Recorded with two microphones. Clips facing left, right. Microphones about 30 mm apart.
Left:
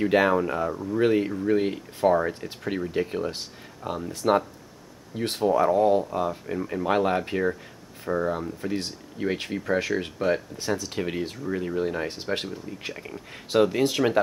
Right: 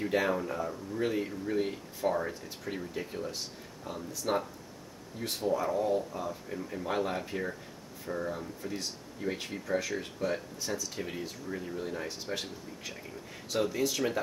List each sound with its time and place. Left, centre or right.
0.0 s speech: left
8.0 s speech: left
8.3 s speech: left
12.9 s speech: left